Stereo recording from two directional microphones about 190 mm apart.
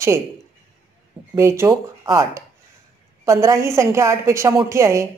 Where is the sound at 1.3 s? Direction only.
15° right (ahead or behind).